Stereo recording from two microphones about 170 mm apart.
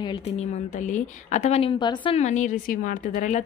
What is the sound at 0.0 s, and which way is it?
A woman's voice, 35° left (ahead or behind).